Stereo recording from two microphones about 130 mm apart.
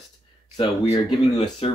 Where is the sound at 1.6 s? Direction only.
45° left (ahead or behind).